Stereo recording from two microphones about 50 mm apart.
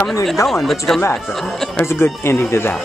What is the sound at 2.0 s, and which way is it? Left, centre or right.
Speech, left.